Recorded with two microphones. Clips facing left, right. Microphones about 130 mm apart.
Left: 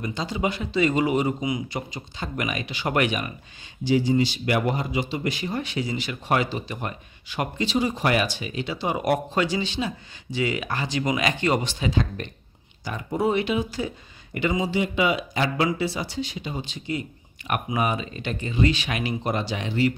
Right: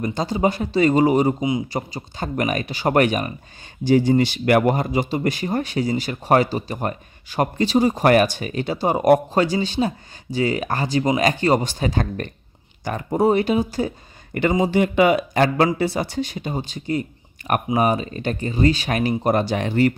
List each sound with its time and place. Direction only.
0.0 s a man's voice: 45° right (ahead or behind)